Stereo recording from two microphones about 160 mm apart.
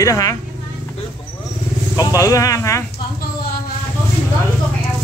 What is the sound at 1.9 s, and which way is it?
Speech, 20° left (ahead or behind).